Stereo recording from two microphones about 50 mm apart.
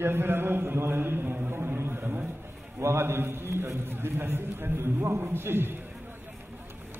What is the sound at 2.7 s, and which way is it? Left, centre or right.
A man's voice, right.